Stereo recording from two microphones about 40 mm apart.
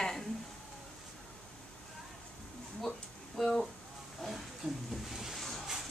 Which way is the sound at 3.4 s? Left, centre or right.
Centre.